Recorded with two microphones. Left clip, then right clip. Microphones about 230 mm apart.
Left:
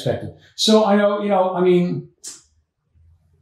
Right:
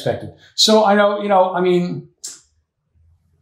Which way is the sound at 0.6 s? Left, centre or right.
Right.